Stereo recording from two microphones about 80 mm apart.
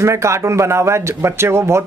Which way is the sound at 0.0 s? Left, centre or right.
Right.